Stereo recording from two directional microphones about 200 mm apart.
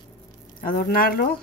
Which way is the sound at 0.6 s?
45° left (ahead or behind).